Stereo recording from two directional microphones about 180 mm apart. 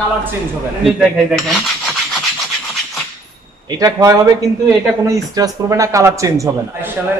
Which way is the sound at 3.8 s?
20° right (ahead or behind).